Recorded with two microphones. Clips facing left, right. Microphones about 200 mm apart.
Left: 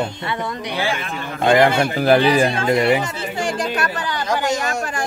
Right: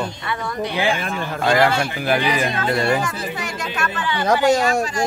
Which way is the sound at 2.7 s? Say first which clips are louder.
Left 3 dB; 20° left (ahead or behind).